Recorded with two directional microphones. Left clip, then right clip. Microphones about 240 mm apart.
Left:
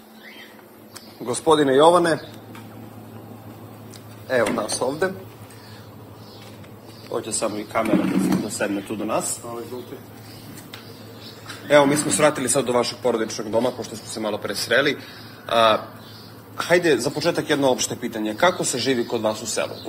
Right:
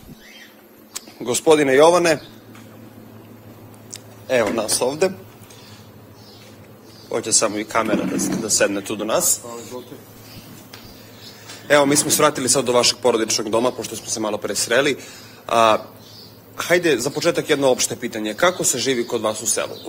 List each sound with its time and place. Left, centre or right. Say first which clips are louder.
1.2 s a man's voice: right 3 dB; right
3.9 s speech: right 3 dB; right
7.1 s speech: right 5 dB; right
11.6 s a man's voice: right 1 dB; right; by 19.7 s centre